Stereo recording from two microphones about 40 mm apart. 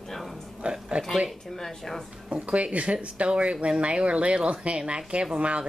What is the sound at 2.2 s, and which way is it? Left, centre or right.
A woman's voice, right.